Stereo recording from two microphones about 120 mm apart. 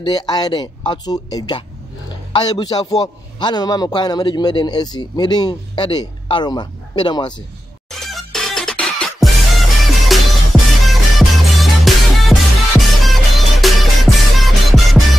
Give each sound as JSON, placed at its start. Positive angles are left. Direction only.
{"t": 0.0, "sound": "a man's voice", "side_deg": 35}
{"t": 7.9, "sound": "music", "side_deg": 0}